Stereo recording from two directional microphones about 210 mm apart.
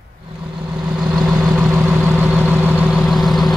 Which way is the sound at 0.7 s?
5° right (ahead or behind).